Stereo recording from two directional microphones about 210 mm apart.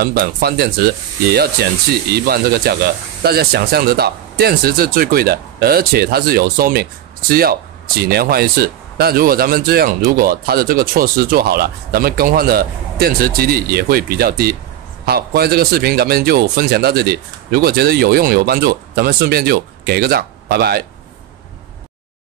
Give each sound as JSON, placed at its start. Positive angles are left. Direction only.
{"t": 0.0, "sound": "speech", "side_deg": -45}